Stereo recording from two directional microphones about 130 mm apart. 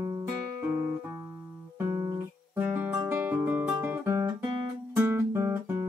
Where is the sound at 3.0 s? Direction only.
15° right (ahead or behind).